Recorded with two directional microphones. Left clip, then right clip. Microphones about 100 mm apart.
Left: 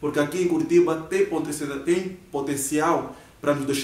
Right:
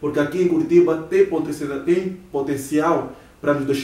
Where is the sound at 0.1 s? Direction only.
15° left (ahead or behind).